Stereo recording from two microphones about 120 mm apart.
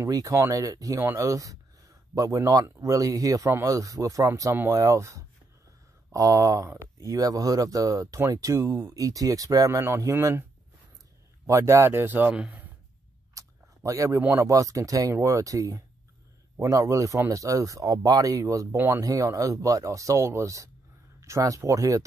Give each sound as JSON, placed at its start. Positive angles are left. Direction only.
{"t": 0.0, "sound": "speech", "side_deg": -25}
{"t": 11.4, "sound": "a man's voice", "side_deg": -25}
{"t": 13.3, "sound": "a sound", "side_deg": -25}
{"t": 14.2, "sound": "speech", "side_deg": -25}